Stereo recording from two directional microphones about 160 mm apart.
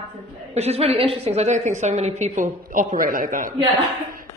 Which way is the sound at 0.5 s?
40° right (ahead or behind).